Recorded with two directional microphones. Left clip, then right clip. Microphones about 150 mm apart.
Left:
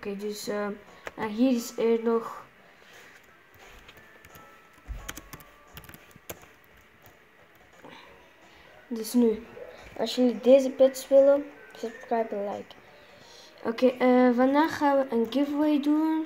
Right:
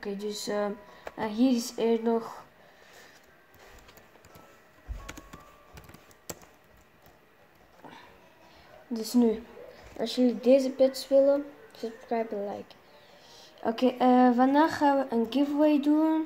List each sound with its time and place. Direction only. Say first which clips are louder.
0.0 s speech: left 1 dB; 10° right (ahead or behind)
5.0 s a sound: left 3 dB; 20° left (ahead or behind)
8.9 s speech: left 1 dB; 10° right (ahead or behind)